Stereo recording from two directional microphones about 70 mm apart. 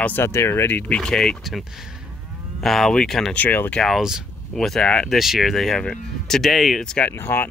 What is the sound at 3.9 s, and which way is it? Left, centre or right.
Speech, centre.